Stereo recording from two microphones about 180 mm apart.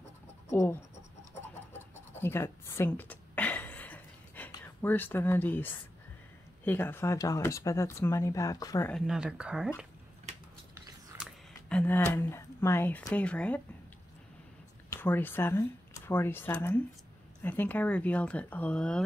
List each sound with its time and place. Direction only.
0.5 s writing: 15° left (ahead or behind)
2.1 s a sound: 15° left (ahead or behind)
4.8 s speech: 10° left (ahead or behind)
8.9 s speech: 5° right (ahead or behind)
11.7 s speech: 10° left (ahead or behind)
14.9 s speech: 10° left (ahead or behind)